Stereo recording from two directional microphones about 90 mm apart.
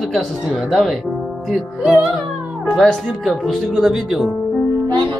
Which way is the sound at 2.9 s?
Centre (ahead or behind).